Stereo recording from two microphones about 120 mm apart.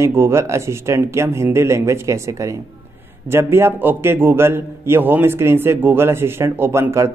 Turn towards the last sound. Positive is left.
turn(degrees=-20)  # may be behind; listen again after turning